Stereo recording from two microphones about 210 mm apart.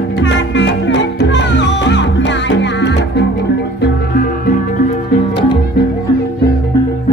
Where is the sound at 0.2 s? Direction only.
60° left (ahead or behind).